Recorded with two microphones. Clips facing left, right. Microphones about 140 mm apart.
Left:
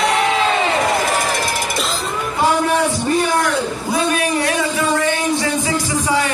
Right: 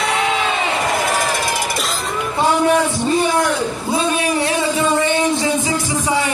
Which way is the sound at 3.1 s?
25° right (ahead or behind).